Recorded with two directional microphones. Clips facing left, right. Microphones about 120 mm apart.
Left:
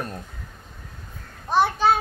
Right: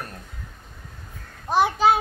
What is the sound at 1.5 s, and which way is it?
Speech, 10° right (ahead or behind).